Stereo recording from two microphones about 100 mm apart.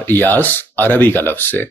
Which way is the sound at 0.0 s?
20° left (ahead or behind).